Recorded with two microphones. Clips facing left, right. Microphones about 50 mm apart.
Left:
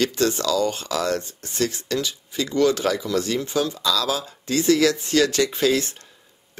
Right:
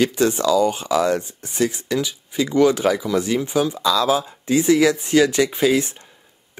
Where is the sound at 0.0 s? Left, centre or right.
Centre.